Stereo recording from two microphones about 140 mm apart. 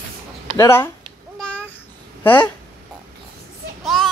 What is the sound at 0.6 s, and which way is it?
Speech, 20° left (ahead or behind).